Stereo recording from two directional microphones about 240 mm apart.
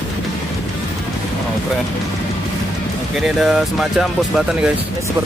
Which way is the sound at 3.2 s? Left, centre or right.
Centre.